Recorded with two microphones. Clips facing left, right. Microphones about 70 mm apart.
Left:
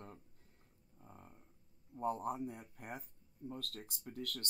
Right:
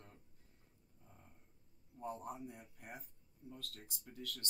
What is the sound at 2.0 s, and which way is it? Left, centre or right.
Speech, left.